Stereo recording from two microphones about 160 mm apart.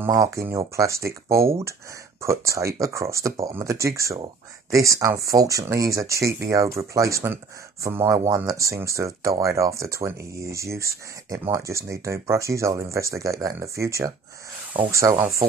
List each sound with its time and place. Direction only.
0.0 s speech: 20° right (ahead or behind)